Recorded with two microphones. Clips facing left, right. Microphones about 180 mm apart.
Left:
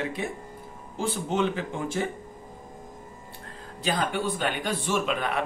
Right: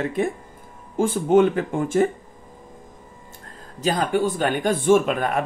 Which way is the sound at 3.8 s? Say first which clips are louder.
Right 6 dB; 40° right (ahead or behind).